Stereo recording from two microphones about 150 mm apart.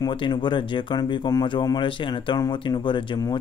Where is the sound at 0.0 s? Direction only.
30° left (ahead or behind).